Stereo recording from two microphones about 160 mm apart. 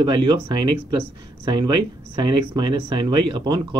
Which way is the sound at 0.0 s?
30° right (ahead or behind).